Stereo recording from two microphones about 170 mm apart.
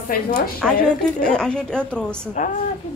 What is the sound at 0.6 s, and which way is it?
A woman's voice, 5° left (ahead or behind).